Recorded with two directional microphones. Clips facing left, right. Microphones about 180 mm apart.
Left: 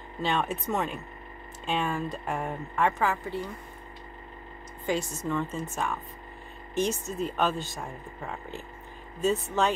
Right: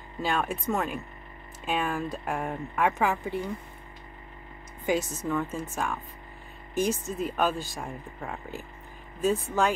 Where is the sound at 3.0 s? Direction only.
15° right (ahead or behind).